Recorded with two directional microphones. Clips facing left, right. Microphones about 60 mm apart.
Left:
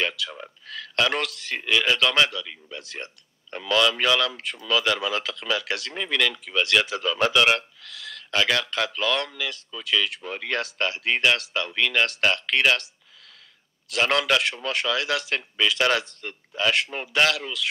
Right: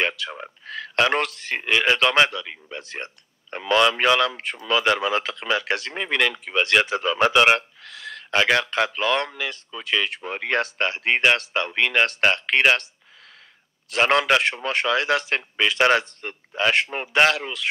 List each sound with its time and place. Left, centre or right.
0.0 s speech: right
13.8 s speech: right